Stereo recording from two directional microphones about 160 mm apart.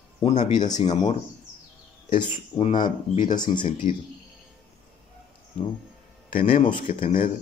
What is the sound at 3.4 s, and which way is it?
Speech, 30° left (ahead or behind).